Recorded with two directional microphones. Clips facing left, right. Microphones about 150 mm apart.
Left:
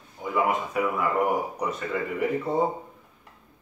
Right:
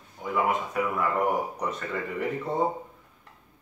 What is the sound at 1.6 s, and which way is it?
Speech, 10° left (ahead or behind).